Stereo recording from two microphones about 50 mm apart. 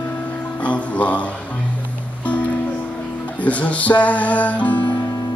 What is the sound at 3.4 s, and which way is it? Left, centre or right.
Music, left.